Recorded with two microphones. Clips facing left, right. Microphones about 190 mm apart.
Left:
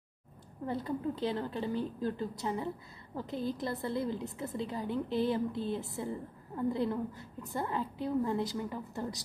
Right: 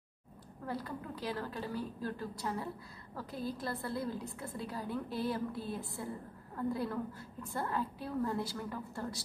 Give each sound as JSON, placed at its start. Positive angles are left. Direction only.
{"t": 0.7, "sound": "a woman's voice", "side_deg": 25}